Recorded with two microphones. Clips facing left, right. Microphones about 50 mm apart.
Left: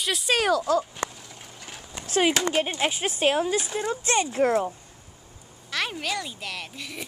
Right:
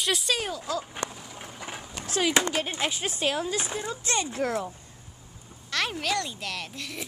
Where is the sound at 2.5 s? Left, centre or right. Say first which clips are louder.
Left 4 dB; left.